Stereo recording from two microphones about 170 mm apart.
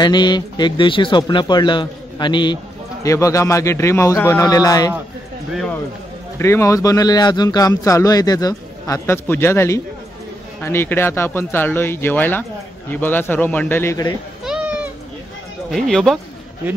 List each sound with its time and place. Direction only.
0.0 s speech: 25° left (ahead or behind)
6.3 s speech: 15° left (ahead or behind)
14.4 s a sound: 5° right (ahead or behind)
15.7 s speech: centre (ahead or behind)